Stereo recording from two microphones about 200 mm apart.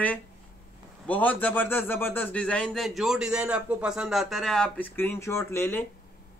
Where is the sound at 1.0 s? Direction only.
10° left (ahead or behind).